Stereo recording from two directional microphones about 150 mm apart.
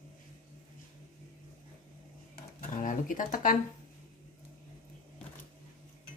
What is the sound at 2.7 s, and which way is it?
Speech, 60° left (ahead or behind).